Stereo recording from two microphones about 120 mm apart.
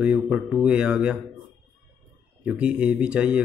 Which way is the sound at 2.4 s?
10° right (ahead or behind).